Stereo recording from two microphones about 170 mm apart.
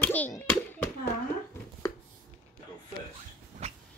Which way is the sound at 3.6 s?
40° right (ahead or behind).